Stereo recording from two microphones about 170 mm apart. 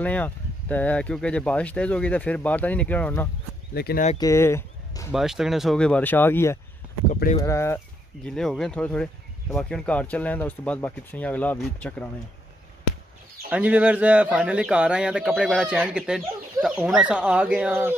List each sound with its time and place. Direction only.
0.0 s speech: 10° left (ahead or behind)
3.7 s speech: 70° left (ahead or behind)
4.2 s speech: 15° left (ahead or behind)
5.1 s speech: centre (ahead or behind); by 7.8 s 15° left (ahead or behind)
8.3 s speech: 5° left (ahead or behind)
13.5 s speech: 10° right (ahead or behind)